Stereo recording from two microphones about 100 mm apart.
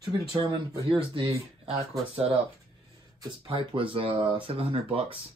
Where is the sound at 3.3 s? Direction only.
60° right (ahead or behind).